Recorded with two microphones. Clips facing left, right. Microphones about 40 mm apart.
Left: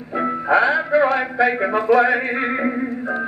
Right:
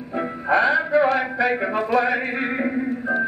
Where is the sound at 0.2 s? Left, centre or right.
Centre.